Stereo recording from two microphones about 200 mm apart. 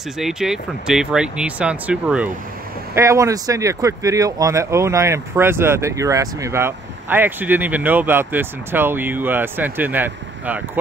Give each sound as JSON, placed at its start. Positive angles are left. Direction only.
{"t": 0.2, "sound": "speech", "side_deg": 0}